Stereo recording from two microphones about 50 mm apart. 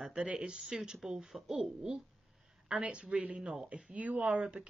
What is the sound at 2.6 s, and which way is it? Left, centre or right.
Speech, right.